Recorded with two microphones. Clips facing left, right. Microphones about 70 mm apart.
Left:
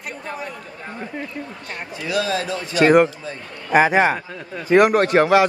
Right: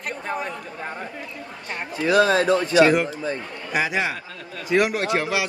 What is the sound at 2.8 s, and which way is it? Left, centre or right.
A man's voice, left.